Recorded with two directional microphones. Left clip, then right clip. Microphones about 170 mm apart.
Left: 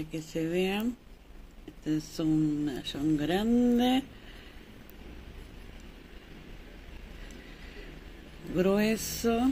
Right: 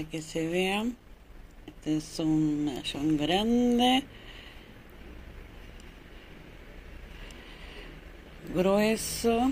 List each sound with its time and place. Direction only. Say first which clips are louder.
0.1 s speech: right 1 dB; 20° left (ahead or behind)
1.9 s speech: right 1 dB; 20° left (ahead or behind)
3.4 s mantra: right 1 dB; 10° right (ahead or behind)
3.7 s speech: right 3 dB; 20° left (ahead or behind)
8.5 s speech: right 2 dB; 25° left (ahead or behind)